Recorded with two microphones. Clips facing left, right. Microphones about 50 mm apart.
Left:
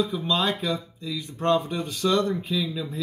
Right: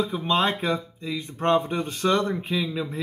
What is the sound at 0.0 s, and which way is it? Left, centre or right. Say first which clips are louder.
Speech: right 2 dB; right.